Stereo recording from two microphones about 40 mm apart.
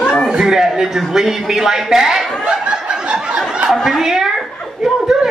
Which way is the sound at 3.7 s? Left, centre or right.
Centre.